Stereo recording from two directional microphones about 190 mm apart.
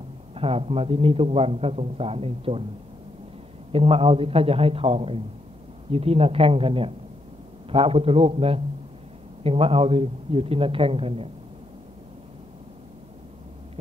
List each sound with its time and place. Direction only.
0.3 s a man's voice: 30° right (ahead or behind)
3.7 s a man's voice: 30° right (ahead or behind)